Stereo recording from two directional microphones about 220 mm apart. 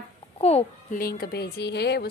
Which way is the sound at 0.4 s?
30° left (ahead or behind).